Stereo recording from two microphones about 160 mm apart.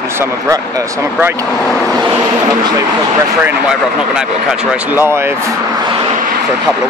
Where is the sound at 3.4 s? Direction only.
5° right (ahead or behind).